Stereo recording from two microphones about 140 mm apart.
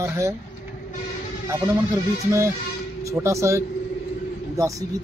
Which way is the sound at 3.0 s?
20° right (ahead or behind).